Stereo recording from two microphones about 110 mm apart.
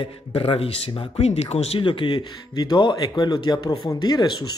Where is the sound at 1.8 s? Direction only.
50° left (ahead or behind).